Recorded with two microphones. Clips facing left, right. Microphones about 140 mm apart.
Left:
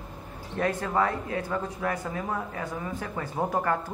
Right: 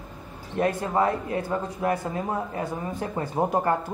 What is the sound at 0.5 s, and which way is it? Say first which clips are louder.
Speech: right 3 dB; 25° right (ahead or behind).